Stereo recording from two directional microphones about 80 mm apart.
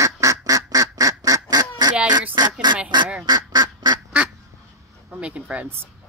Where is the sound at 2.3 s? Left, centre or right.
Right.